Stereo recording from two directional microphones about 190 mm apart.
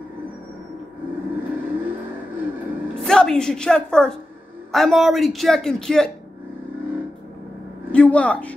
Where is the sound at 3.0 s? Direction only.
5° left (ahead or behind).